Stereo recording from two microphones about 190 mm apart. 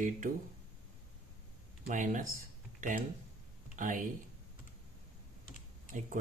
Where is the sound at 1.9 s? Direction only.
40° right (ahead or behind).